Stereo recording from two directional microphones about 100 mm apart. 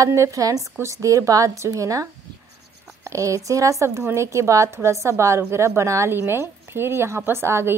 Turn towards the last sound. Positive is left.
turn(degrees=-25)  # may be behind; listen again after turning